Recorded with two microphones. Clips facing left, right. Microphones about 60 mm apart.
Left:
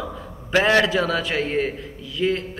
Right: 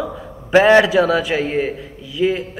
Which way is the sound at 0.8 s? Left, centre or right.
Centre.